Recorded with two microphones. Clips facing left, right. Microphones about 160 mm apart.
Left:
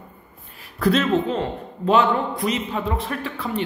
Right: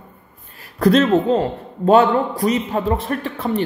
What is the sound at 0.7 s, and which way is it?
Speech, 40° right (ahead or behind).